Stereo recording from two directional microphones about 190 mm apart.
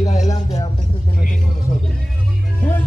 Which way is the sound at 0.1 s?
35° left (ahead or behind).